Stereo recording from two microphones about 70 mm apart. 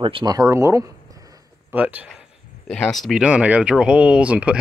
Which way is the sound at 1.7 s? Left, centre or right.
Right.